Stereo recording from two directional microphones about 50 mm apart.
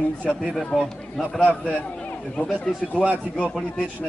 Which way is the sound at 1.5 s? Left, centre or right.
Left.